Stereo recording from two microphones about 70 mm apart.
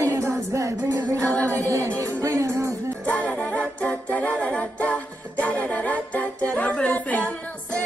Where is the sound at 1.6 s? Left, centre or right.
Right.